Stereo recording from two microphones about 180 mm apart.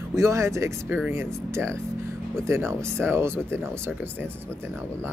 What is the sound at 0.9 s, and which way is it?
Speech, 10° right (ahead or behind).